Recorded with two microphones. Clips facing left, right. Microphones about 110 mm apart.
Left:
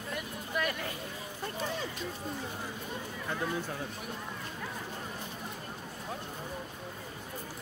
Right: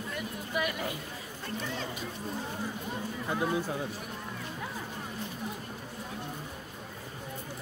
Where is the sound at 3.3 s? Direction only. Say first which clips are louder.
Right 4 dB; 20° right (ahead or behind).